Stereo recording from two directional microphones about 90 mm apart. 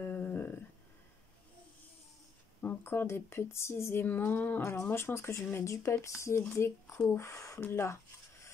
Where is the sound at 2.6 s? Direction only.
25° left (ahead or behind).